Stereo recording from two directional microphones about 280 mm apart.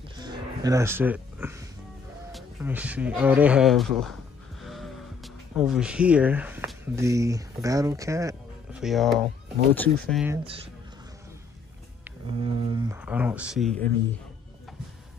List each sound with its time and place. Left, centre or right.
0.2 s a sound: centre
2.3 s speech: centre
8.8 s speech: centre
10.3 s speech: centre
12.3 s speech: centre